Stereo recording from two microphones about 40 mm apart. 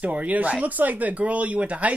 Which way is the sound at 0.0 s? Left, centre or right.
Right.